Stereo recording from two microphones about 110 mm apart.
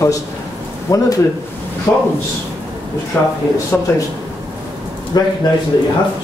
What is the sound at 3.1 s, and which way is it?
Speech, 15° left (ahead or behind).